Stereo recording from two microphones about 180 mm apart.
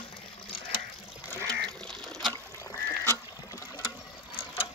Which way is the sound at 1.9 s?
Centre (ahead or behind).